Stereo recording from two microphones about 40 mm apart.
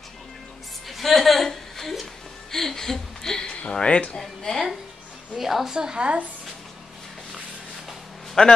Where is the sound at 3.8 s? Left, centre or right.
Left.